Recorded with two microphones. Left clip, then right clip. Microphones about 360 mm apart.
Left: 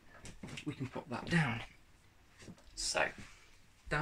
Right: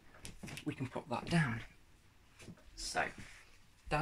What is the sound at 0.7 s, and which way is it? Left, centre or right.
Speech, right.